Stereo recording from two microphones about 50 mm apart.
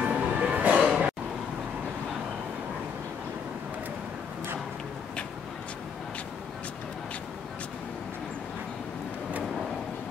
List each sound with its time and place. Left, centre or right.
0.0 s music: right